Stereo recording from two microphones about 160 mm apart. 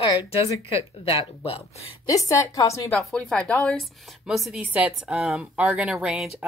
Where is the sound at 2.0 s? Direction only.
20° left (ahead or behind).